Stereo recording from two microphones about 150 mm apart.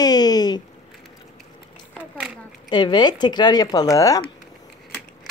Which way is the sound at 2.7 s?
30° left (ahead or behind).